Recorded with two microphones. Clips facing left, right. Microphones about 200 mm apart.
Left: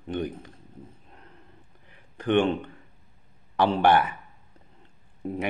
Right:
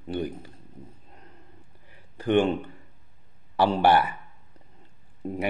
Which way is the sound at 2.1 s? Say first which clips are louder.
Right 1 dB; 10° right (ahead or behind).